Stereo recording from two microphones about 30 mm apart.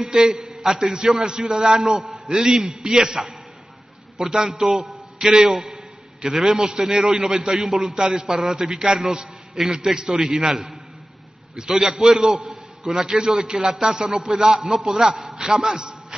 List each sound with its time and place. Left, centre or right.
0.2 s a man's voice: right